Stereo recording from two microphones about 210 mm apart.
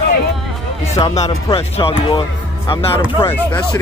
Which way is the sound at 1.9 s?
25° left (ahead or behind).